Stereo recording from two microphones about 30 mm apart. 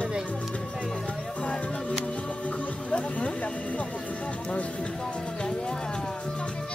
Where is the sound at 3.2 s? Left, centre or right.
Left.